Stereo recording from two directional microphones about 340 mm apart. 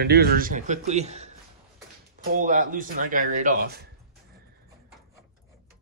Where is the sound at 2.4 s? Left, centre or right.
Right.